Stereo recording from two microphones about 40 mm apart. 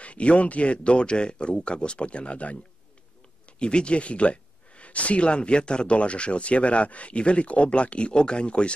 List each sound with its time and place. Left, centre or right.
0.0 s speech: left